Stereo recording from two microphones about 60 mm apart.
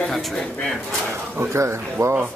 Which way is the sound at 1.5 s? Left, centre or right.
Right.